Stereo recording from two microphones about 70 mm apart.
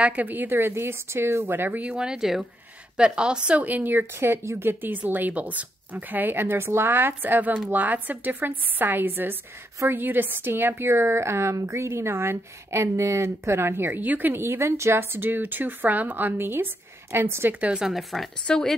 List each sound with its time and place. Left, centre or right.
0.0 s speech: right
2.0 s a woman's voice: centre; by 17.6 s right
17.6 s speech: centre
18.1 s speech: centre